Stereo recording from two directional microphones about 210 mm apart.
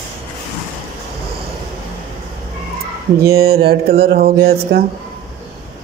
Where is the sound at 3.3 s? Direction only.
45° right (ahead or behind).